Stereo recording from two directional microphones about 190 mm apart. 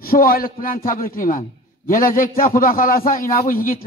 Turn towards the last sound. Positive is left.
turn(degrees=50)  # may be behind; listen again after turning